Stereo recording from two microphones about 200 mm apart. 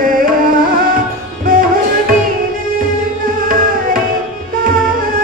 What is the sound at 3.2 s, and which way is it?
Music, 45° right (ahead or behind).